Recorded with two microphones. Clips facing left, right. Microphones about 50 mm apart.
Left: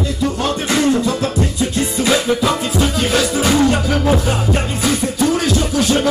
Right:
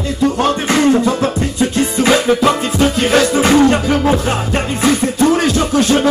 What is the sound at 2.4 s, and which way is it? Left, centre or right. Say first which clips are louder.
Music: right 4 dB; right.